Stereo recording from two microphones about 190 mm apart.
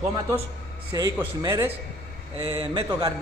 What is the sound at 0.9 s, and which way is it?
Speech, 15° right (ahead or behind).